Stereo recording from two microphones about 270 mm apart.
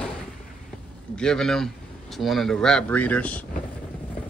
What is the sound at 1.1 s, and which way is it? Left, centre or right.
Speech, centre.